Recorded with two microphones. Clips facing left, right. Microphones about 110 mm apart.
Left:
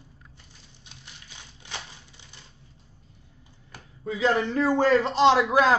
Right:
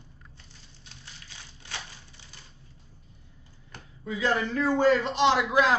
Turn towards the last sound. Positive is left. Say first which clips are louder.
# left 3 dB
turn(degrees=40)  # may be behind; listen again after turning